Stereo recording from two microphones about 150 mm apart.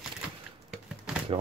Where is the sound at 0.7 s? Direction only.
5° right (ahead or behind).